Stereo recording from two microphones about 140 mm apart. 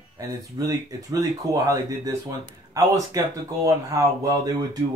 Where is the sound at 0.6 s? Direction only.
30° right (ahead or behind).